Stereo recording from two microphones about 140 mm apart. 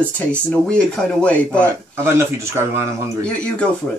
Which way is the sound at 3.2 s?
10° left (ahead or behind).